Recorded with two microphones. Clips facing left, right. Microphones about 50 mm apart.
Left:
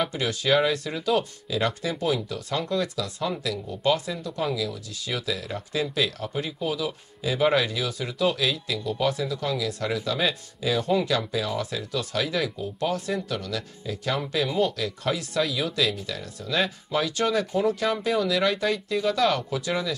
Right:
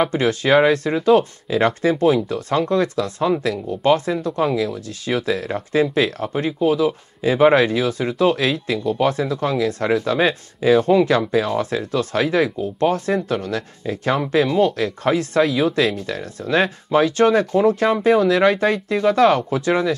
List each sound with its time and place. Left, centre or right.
0.0 s speech: right